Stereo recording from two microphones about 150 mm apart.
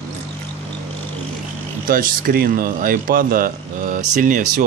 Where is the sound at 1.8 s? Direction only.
70° right (ahead or behind).